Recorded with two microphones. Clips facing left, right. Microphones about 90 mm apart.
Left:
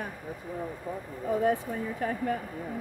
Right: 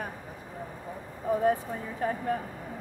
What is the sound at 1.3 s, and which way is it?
Speech, 30° right (ahead or behind).